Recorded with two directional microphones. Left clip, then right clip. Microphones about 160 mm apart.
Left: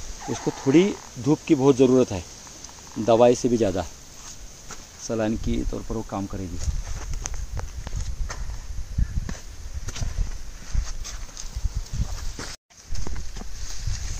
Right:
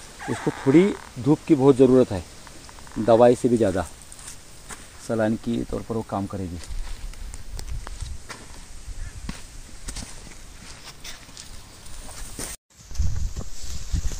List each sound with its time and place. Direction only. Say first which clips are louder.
0.2 s speech: right 1 dB; 15° right (ahead or behind)
5.0 s speech: right 2 dB; 35° right (ahead or behind)